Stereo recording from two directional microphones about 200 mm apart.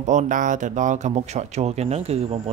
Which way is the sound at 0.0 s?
35° right (ahead or behind).